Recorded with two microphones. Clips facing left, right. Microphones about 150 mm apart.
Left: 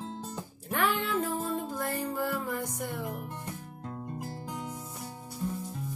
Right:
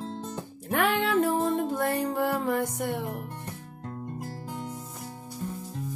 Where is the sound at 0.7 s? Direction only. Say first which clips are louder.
Right 5 dB; 65° right (ahead or behind).